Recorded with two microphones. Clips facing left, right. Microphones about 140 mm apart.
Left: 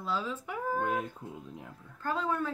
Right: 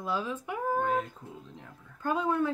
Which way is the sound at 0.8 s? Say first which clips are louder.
Right 2 dB; 10° left (ahead or behind).